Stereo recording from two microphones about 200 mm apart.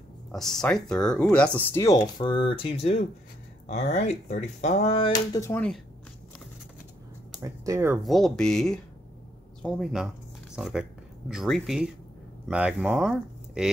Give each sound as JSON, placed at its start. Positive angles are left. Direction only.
{"t": 0.3, "sound": "speech", "side_deg": 0}
{"t": 7.4, "sound": "speech", "side_deg": -15}
{"t": 8.0, "sound": "speech", "side_deg": 0}